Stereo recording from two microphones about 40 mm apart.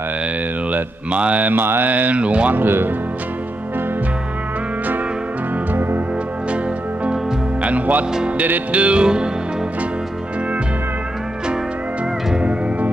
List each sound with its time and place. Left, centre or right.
0.7 s speech: right
1.5 s a sound: right
1.9 s speech: right
2.5 s a sound: right
5.8 s music: right
7.6 s music: right
8.7 s speech: right
9.0 s music: right